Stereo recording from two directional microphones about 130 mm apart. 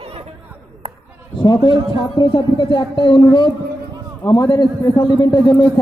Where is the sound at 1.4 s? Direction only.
40° left (ahead or behind).